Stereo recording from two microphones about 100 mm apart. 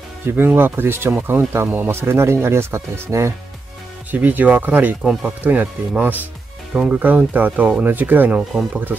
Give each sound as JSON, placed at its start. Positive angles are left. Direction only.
{"t": 0.4, "sound": "speech", "side_deg": -20}
{"t": 4.1, "sound": "speech", "side_deg": -15}